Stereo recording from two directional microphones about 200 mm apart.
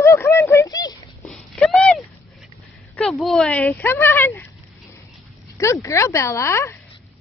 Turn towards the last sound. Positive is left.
turn(degrees=15)  # may be behind; listen again after turning